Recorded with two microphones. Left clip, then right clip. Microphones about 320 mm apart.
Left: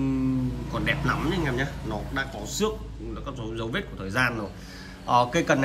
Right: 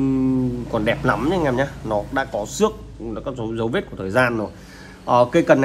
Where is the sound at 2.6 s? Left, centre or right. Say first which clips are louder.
Right 7 dB; right.